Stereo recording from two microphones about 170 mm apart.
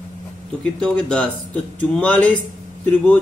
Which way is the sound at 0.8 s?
5° left (ahead or behind).